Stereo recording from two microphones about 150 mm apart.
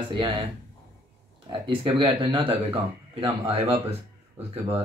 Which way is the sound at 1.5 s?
35° right (ahead or behind).